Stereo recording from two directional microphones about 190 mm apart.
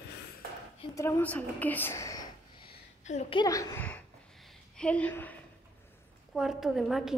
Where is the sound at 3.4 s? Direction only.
15° left (ahead or behind).